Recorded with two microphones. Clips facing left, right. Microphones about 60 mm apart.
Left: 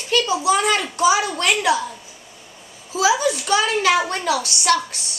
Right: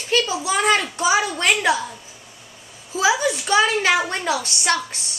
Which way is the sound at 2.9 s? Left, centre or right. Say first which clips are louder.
Left 1 dB; right.